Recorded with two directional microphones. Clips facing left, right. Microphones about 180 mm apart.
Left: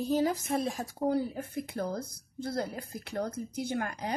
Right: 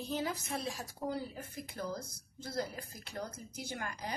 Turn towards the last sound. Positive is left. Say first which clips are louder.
# left 8 dB
turn(degrees=60)  # may be behind; listen again after turning